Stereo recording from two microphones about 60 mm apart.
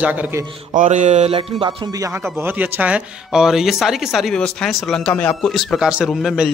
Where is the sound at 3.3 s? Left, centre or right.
Centre.